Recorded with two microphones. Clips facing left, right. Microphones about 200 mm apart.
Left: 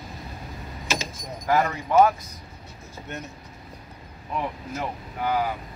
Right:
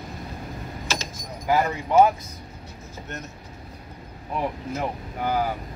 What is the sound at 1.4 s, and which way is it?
Speech, 10° right (ahead or behind).